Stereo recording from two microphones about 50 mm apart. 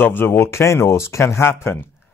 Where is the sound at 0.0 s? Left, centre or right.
Left.